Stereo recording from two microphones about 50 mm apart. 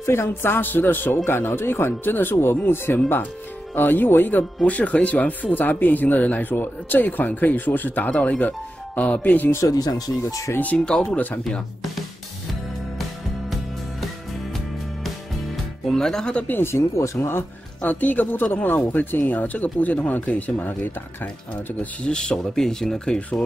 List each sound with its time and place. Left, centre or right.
0.0 s a man's voice: left
4.6 s speech: left
10.2 s speech: left
10.9 s speech: centre
11.1 s speech: left
15.0 s music: centre
16.0 s speech: centre
16.4 s a man's voice: left
16.9 s speech: left
17.8 s speech: left
22.0 s speech: centre